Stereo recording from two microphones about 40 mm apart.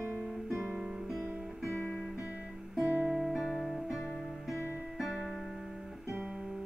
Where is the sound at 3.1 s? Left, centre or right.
Centre.